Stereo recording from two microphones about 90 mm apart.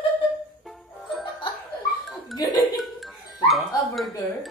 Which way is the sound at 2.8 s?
Centre (ahead or behind).